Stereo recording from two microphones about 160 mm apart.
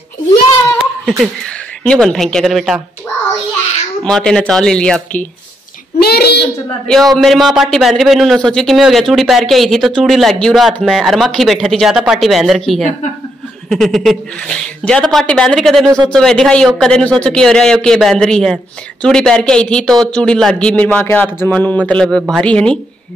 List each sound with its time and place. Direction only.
0.7 s giggle: centre (ahead or behind)
1.9 s a man's voice: 5° left (ahead or behind)
4.0 s a man's voice: 5° left (ahead or behind)
5.9 s a child's voice: 80° left
6.9 s a man's voice: centre (ahead or behind)